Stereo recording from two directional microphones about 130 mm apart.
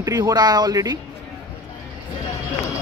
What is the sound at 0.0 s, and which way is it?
Speech, 25° right (ahead or behind).